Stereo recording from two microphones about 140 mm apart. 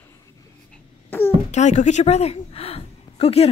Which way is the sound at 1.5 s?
55° left (ahead or behind).